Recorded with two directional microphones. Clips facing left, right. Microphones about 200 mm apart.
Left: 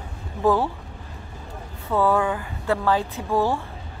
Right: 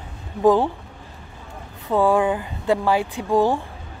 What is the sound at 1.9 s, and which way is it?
Speech, 15° right (ahead or behind).